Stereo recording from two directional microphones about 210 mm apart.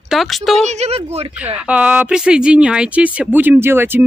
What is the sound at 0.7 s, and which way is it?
Speech, 30° right (ahead or behind).